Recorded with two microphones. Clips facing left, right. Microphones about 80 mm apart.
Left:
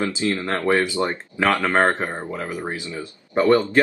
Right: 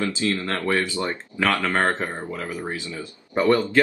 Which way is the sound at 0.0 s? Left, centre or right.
Left.